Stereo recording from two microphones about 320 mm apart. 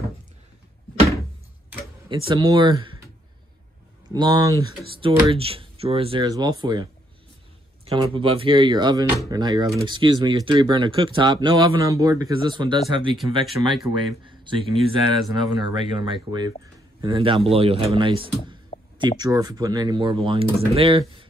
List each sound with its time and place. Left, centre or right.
2.2 s speech: centre
4.1 s speech: centre